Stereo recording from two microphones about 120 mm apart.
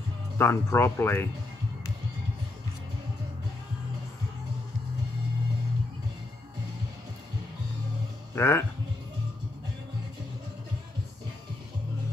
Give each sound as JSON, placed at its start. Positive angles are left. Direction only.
{"t": 0.4, "sound": "speech", "side_deg": 20}
{"t": 8.4, "sound": "speech", "side_deg": 20}